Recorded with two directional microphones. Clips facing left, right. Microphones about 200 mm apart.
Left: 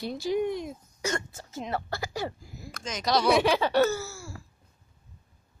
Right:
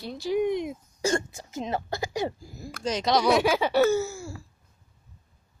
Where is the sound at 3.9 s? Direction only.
20° right (ahead or behind).